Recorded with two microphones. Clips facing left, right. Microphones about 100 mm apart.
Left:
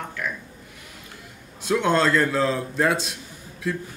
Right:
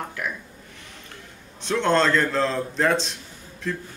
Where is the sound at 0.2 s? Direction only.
5° right (ahead or behind).